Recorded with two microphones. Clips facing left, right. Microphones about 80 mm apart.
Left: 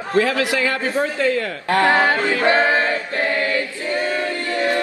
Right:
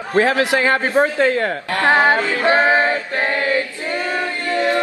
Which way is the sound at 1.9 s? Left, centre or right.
Right.